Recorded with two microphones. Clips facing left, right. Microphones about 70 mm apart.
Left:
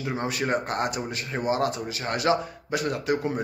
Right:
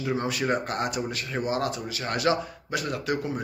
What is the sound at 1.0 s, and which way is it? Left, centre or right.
Speech, centre.